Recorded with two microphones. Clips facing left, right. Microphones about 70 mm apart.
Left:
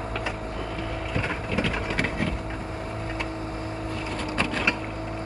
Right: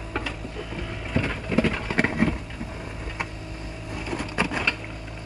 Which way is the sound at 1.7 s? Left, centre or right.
Right.